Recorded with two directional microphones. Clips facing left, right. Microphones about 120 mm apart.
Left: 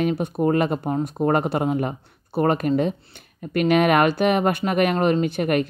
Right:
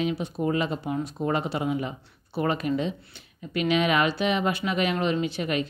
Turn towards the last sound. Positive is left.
turn(degrees=55)  # may be behind; listen again after turning